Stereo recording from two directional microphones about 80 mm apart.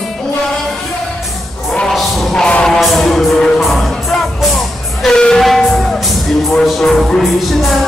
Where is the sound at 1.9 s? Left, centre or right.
Centre.